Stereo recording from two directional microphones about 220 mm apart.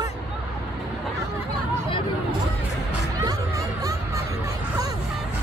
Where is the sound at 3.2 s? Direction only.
15° right (ahead or behind).